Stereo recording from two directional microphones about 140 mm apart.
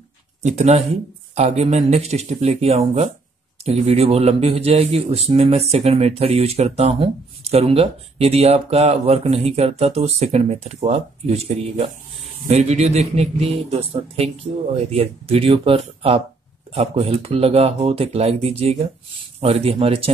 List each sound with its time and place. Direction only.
0.4 s speech: 55° right (ahead or behind)